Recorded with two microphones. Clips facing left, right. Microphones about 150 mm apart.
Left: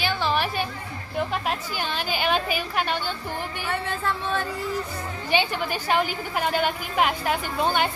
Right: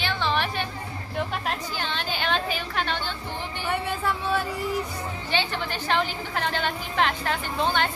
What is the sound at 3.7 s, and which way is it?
Speech, 10° right (ahead or behind).